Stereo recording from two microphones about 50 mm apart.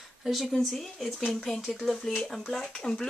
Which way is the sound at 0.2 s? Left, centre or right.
Centre.